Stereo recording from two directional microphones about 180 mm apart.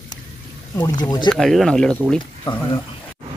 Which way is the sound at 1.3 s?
Centre (ahead or behind).